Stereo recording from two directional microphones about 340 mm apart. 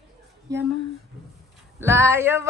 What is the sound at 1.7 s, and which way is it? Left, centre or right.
Speech, centre.